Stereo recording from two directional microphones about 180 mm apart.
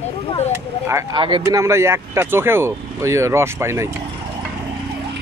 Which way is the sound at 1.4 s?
15° right (ahead or behind).